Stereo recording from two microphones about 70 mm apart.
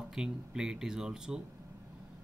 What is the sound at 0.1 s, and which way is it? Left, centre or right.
Speech, centre.